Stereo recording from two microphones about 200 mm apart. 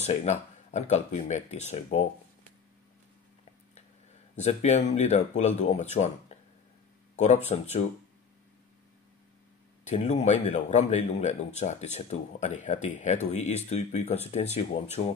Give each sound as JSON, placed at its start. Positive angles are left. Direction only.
{"t": 0.0, "sound": "speech", "side_deg": 35}
{"t": 3.7, "sound": "speech", "side_deg": 35}
{"t": 9.9, "sound": "speech", "side_deg": 35}